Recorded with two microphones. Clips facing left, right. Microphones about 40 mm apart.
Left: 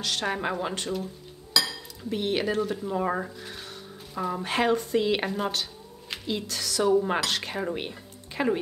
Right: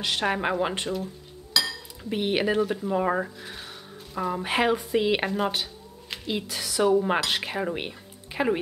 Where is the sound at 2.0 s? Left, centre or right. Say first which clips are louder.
Right 2 dB; centre.